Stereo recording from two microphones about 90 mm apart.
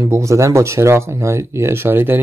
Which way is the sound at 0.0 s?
35° right (ahead or behind).